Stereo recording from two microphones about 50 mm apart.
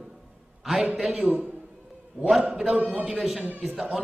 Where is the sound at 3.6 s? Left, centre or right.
Centre.